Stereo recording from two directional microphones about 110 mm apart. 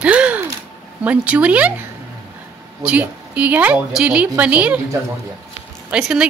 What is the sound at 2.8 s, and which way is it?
A woman's voice, 10° right (ahead or behind).